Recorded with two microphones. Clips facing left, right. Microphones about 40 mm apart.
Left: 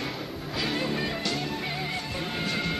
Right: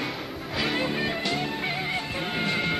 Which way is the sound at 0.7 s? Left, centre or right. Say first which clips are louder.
Right 1 dB; right.